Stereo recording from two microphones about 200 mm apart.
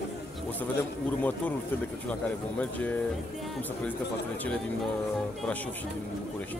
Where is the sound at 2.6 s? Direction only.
5° left (ahead or behind).